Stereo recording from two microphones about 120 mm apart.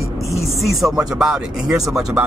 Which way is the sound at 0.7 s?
Centre (ahead or behind).